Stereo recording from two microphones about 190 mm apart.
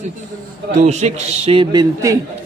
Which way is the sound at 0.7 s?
35° right (ahead or behind).